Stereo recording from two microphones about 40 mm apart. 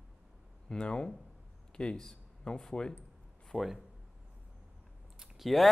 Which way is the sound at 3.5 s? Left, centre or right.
Centre.